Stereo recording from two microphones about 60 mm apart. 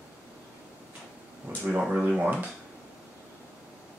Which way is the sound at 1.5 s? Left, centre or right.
Right.